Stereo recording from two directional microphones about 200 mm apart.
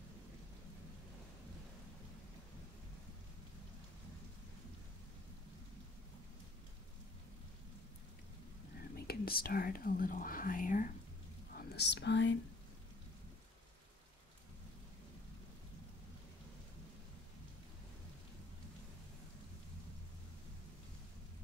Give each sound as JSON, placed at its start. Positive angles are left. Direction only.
{"t": 8.9, "sound": "speech", "side_deg": 50}
{"t": 11.5, "sound": "speech", "side_deg": 55}